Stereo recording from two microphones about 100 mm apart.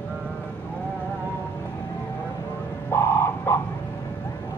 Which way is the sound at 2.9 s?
20° left (ahead or behind).